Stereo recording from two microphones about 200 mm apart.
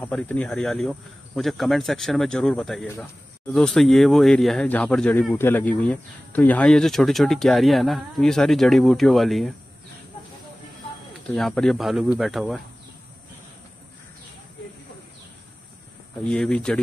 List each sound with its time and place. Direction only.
0.0 s speech: 5° left (ahead or behind)
11.3 s speech: centre (ahead or behind)
16.3 s speech: 5° left (ahead or behind)